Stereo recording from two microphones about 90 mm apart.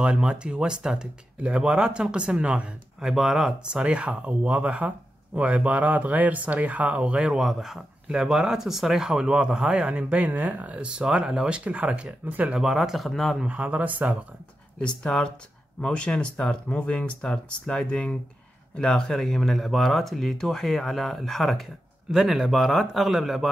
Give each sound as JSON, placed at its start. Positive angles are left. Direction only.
{"t": 0.0, "sound": "speech", "side_deg": -10}
{"t": 12.5, "sound": "speech", "side_deg": -5}
{"t": 13.4, "sound": "speech", "side_deg": -15}
{"t": 14.8, "sound": "speech", "side_deg": 10}